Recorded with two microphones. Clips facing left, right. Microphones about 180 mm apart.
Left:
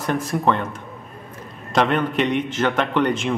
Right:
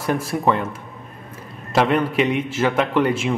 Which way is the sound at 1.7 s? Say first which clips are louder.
Right 1 dB; 5° right (ahead or behind).